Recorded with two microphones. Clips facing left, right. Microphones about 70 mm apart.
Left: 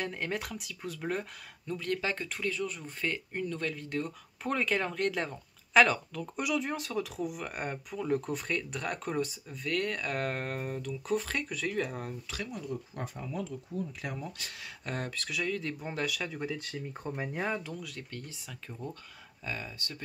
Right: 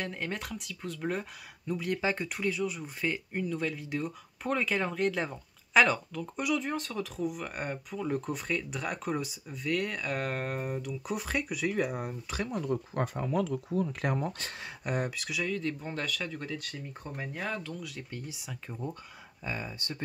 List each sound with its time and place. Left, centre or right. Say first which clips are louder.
0.0 s speech: left 1 dB; centre
1.7 s speech: right 2 dB; centre
12.4 s speech: right 6 dB; right
14.0 s speech: right 7 dB; right
14.9 s speech: right 4 dB; centre
16.5 s speech: left 1 dB; left
17.7 s speech: right 1 dB; centre
18.1 s speech: right 3 dB; centre